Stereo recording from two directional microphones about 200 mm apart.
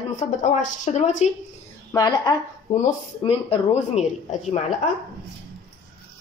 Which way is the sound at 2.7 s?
35° left (ahead or behind).